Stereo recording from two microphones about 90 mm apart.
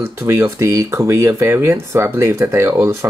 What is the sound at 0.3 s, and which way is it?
Speech, 30° right (ahead or behind).